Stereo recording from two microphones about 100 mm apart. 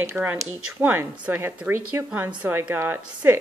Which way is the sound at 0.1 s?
20° right (ahead or behind).